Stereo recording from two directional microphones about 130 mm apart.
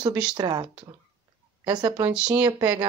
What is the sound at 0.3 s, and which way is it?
Speech, 35° right (ahead or behind).